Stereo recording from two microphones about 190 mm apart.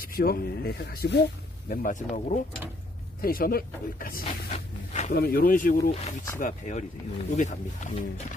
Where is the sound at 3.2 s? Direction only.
50° left (ahead or behind).